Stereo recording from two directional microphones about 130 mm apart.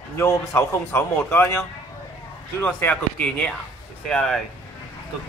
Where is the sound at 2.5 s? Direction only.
15° left (ahead or behind).